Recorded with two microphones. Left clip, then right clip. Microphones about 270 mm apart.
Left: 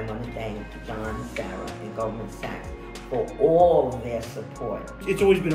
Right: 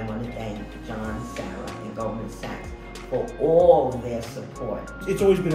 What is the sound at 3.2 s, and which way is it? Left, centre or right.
Speech, centre.